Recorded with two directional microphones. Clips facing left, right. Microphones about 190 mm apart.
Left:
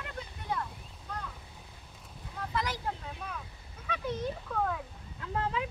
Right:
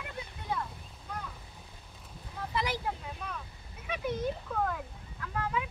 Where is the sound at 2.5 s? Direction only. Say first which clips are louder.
Right 1 dB; 10° right (ahead or behind).